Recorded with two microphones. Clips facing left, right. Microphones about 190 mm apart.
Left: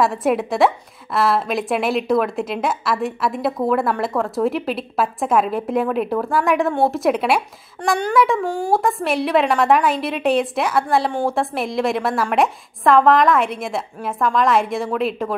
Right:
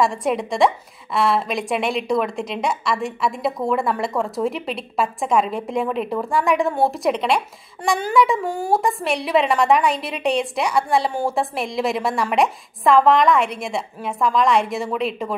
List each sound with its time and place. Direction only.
0.0 s a woman's voice: 5° left (ahead or behind)